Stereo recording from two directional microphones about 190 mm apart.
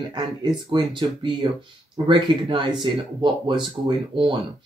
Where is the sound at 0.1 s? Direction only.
25° right (ahead or behind).